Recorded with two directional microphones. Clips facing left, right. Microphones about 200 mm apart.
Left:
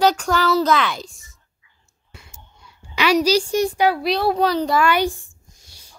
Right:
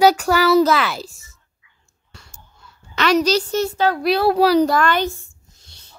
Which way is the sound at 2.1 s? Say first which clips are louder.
Left 1 dB; 15° left (ahead or behind).